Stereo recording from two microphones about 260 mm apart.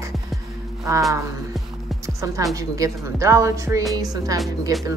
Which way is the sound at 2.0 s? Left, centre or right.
Centre.